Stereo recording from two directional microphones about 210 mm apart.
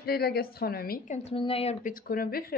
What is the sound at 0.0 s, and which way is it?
A woman's voice, 50° left (ahead or behind).